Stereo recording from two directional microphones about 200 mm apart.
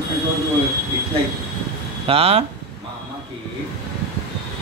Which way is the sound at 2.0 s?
30° right (ahead or behind).